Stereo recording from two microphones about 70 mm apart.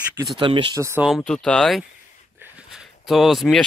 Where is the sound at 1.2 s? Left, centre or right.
Centre.